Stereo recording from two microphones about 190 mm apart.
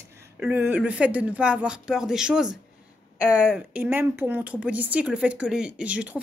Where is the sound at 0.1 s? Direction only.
10° right (ahead or behind).